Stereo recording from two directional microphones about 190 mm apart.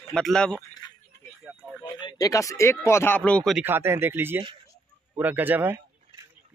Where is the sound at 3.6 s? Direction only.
10° right (ahead or behind).